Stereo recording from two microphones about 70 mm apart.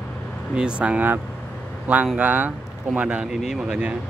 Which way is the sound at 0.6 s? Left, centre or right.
Centre.